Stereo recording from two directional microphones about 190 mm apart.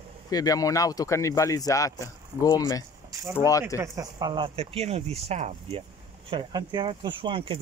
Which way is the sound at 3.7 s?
15° right (ahead or behind).